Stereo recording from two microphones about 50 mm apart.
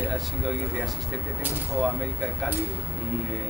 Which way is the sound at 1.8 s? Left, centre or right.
Centre.